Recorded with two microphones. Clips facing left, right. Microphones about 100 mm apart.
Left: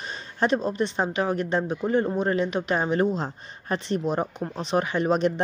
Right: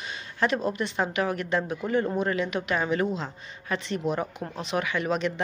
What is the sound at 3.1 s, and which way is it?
Speech, 40° left (ahead or behind).